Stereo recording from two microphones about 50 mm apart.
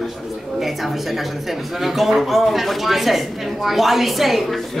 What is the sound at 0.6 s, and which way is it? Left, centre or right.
Speech, centre.